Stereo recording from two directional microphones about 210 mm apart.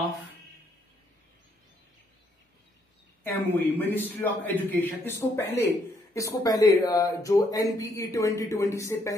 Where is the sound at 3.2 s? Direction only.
10° left (ahead or behind).